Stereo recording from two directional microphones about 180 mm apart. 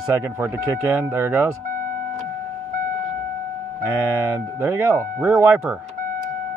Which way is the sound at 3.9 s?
10° right (ahead or behind).